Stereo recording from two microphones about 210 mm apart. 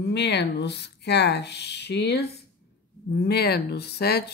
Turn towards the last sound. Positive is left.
turn(degrees=50)  # may be behind; listen again after turning